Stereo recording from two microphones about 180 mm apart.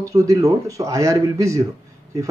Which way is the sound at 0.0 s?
20° right (ahead or behind).